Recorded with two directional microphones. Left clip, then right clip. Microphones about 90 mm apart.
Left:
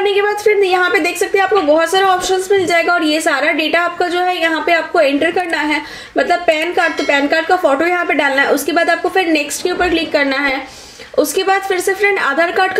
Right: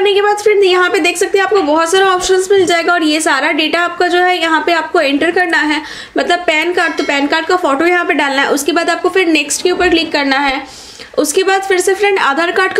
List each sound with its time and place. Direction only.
0.0 s a woman's voice: 35° right (ahead or behind)